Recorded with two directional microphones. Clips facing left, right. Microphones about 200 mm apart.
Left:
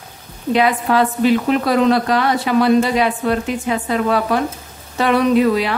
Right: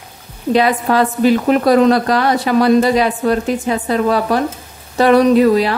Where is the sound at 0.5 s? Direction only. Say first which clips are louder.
Right 2 dB; 40° right (ahead or behind).